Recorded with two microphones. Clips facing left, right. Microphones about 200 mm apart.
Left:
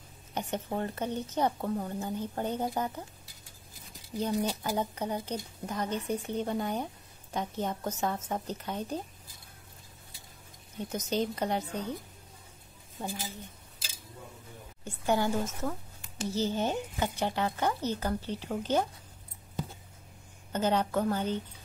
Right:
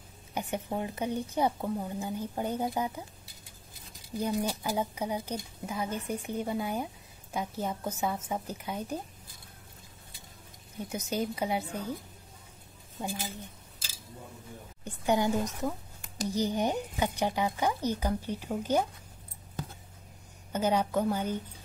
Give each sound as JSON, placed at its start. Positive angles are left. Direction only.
{"t": 0.3, "sound": "a woman's voice", "side_deg": -10}
{"t": 4.2, "sound": "a woman's voice", "side_deg": -10}
{"t": 10.9, "sound": "a woman's voice", "side_deg": -10}
{"t": 13.0, "sound": "a woman's voice", "side_deg": -15}
{"t": 14.9, "sound": "a woman's voice", "side_deg": -15}
{"t": 20.5, "sound": "a woman's voice", "side_deg": -10}